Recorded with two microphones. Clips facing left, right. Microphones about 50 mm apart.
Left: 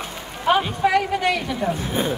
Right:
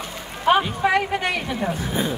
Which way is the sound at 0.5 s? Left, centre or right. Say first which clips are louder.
Even; centre.